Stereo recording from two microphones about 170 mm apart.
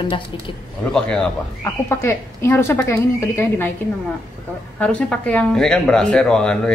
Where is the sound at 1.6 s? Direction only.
15° left (ahead or behind).